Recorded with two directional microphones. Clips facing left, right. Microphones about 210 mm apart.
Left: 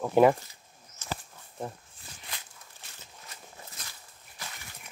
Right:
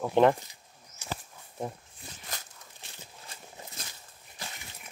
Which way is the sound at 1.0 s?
10° right (ahead or behind).